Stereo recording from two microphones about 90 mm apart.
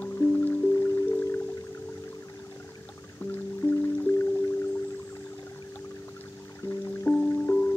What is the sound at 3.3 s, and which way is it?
Music, 30° left (ahead or behind).